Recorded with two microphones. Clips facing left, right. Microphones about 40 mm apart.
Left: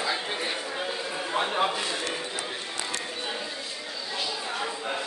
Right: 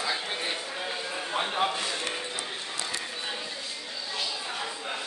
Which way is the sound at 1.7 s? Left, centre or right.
Left.